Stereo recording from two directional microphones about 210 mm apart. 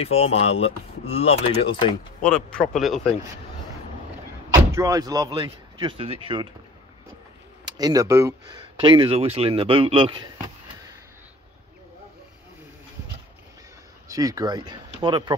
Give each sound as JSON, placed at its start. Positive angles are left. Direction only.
{"t": 0.0, "sound": "speech", "side_deg": 30}
{"t": 2.2, "sound": "a man's voice", "side_deg": 5}
{"t": 4.7, "sound": "speech", "side_deg": -15}
{"t": 7.6, "sound": "speech", "side_deg": -20}
{"t": 14.0, "sound": "speech", "side_deg": -15}